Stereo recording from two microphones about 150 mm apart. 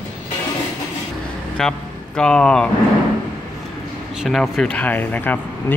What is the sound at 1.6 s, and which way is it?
Speech, 5° left (ahead or behind).